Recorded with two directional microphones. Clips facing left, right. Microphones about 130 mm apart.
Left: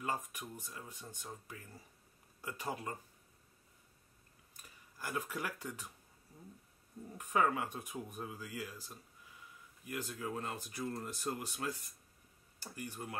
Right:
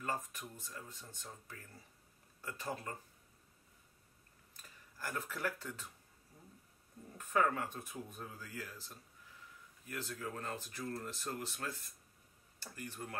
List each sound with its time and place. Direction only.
0.0 s speech: 15° left (ahead or behind)
4.6 s speech: 15° left (ahead or behind)
7.2 s speech: 15° left (ahead or behind)